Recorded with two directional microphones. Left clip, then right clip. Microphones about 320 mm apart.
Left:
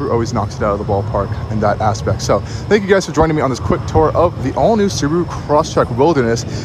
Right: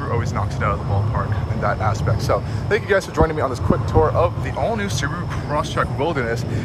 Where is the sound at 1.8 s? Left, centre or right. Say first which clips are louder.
Left 6 dB; centre.